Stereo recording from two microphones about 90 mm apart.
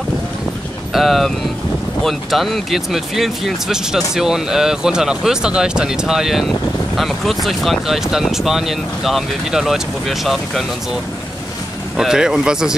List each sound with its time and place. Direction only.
0.9 s speech: centre (ahead or behind)
12.0 s speech: 5° right (ahead or behind)